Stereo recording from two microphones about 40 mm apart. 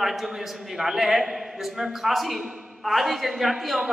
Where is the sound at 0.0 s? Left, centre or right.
Centre.